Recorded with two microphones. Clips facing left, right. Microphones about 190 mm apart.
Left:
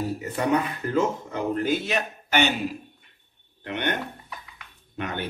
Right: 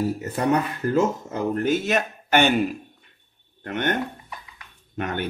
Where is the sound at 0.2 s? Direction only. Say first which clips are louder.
Right 2 dB; 40° right (ahead or behind).